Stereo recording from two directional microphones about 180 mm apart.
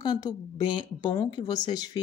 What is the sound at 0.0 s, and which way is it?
Speech, 25° left (ahead or behind).